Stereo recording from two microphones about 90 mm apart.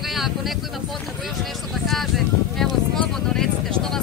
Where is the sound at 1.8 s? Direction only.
Centre (ahead or behind).